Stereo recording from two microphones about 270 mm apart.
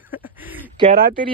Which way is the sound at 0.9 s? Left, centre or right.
Right.